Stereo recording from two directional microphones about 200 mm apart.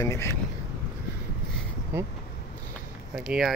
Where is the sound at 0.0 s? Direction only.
15° left (ahead or behind).